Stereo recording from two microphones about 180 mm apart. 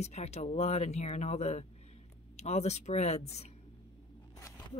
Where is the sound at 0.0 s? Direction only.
35° left (ahead or behind).